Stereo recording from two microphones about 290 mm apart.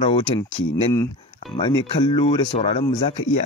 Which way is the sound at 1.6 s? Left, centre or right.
Centre.